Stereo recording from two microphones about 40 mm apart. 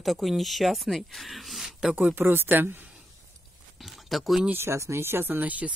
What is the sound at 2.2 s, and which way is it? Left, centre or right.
Speech, right.